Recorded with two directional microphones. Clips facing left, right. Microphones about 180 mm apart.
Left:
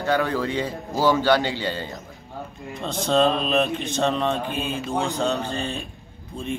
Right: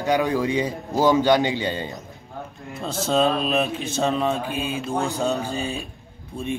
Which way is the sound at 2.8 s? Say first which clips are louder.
Left 1 dB; 5° right (ahead or behind).